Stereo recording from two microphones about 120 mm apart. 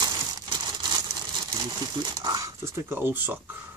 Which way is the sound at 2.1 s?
30° right (ahead or behind).